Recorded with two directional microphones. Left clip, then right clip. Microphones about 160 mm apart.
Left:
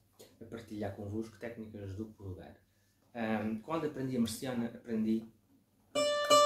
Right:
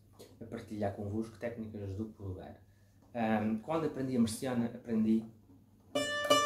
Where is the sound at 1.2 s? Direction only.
10° left (ahead or behind).